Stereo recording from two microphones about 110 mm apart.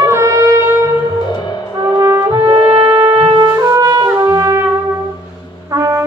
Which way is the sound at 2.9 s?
50° right (ahead or behind).